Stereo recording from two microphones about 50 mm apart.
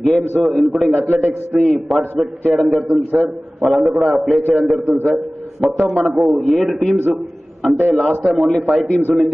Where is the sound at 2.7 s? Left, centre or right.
Centre.